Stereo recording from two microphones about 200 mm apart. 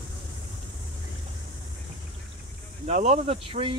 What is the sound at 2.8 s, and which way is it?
Speech, 35° right (ahead or behind).